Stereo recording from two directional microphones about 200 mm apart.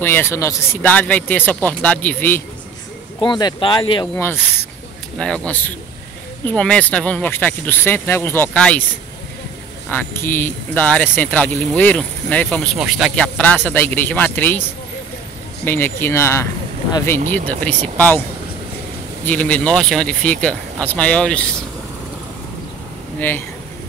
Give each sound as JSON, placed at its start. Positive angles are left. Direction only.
{"t": 0.0, "sound": "speech", "side_deg": 10}
{"t": 3.2, "sound": "speech", "side_deg": 20}
{"t": 4.2, "sound": "speech", "side_deg": 10}
{"t": 9.8, "sound": "speech", "side_deg": 10}
{"t": 15.6, "sound": "speech", "side_deg": 10}
{"t": 19.2, "sound": "speech", "side_deg": 5}
{"t": 23.1, "sound": "speech", "side_deg": 10}